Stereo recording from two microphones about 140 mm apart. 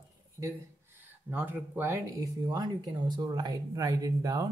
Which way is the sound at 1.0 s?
15° right (ahead or behind).